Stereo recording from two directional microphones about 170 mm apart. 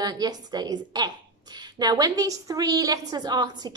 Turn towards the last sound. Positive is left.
turn(degrees=-25)  # may be behind; listen again after turning